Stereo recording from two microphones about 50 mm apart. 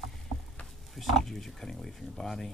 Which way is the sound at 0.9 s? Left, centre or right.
Centre.